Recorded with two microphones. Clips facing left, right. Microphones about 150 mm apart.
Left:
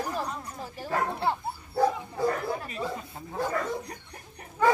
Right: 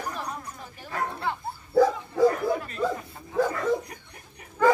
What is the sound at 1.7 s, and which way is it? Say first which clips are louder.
Bow-wow: right 5 dB; 90° right.